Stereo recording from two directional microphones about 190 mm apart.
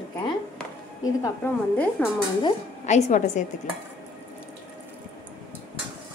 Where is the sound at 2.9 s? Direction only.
40° left (ahead or behind).